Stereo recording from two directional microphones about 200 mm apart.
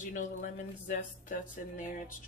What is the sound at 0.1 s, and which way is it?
Speech, 40° left (ahead or behind).